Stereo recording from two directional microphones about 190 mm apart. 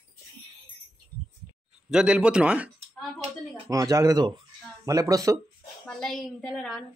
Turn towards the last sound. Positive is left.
turn(degrees=0)  # may be behind; listen again after turning